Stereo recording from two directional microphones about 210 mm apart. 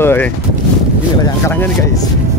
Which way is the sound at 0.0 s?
10° left (ahead or behind).